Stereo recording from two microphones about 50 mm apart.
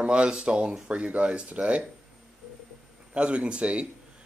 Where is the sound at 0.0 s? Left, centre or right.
Right.